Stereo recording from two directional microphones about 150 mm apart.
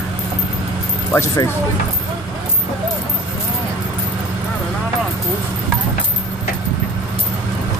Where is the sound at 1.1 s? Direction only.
15° left (ahead or behind).